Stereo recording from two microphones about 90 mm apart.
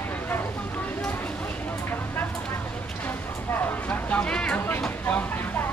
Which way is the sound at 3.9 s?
15° left (ahead or behind).